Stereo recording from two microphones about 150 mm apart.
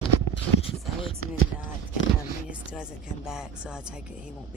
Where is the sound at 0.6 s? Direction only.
35° left (ahead or behind).